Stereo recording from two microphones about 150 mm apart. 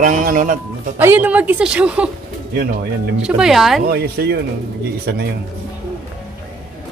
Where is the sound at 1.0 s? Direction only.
15° right (ahead or behind).